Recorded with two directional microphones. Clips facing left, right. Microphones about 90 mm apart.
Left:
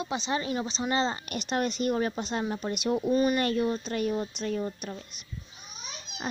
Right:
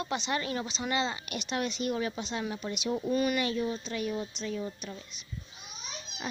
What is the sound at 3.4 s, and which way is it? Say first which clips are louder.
Speech: left 4 dB; 55° left (ahead or behind).